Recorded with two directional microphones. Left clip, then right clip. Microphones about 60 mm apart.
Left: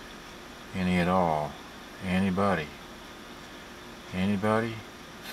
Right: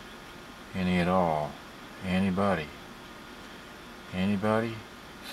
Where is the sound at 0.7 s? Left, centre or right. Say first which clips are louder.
Left 1 dB; centre.